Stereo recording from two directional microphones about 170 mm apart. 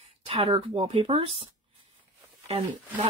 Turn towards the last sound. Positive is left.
turn(degrees=-35)  # may be behind; listen again after turning